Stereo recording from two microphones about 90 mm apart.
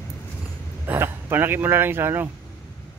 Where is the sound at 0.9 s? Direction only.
25° right (ahead or behind).